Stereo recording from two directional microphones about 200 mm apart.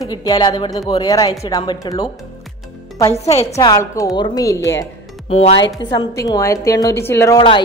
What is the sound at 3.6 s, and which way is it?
Speech, 20° left (ahead or behind).